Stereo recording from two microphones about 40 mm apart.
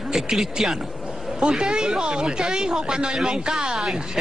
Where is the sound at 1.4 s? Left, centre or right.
Right.